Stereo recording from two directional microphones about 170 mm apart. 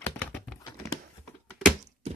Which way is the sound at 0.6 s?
20° left (ahead or behind).